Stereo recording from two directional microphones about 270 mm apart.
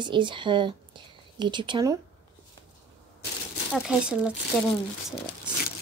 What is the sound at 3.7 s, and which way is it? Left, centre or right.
Speech, centre.